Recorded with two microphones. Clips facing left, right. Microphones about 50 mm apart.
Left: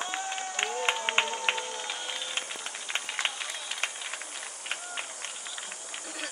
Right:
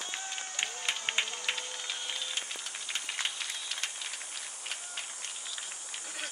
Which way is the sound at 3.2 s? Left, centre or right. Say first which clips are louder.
Left 4 dB; left.